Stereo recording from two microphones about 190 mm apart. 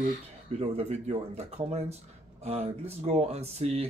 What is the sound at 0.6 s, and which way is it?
Speech, 35° right (ahead or behind).